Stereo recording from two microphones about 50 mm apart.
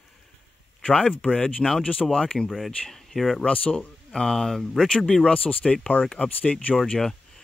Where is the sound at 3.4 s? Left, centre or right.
Left.